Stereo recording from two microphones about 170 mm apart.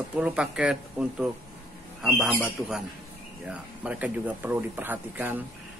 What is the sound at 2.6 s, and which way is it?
Speech, 20° right (ahead or behind).